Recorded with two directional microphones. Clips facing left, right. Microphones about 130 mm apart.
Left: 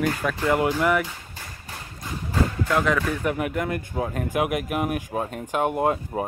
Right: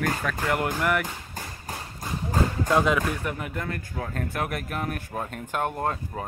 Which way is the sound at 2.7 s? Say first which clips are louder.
Right 2 dB; 20° right (ahead or behind).